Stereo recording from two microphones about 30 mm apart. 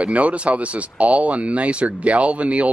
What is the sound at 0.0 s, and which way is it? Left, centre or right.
Speech, right.